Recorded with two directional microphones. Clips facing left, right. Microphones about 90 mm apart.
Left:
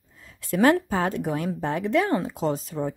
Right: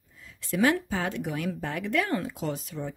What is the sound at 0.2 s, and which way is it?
A woman's voice, 45° left (ahead or behind).